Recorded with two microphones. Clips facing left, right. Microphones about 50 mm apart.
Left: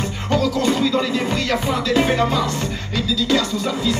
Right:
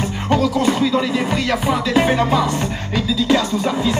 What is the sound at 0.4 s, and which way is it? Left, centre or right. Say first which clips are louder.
Music: even; centre.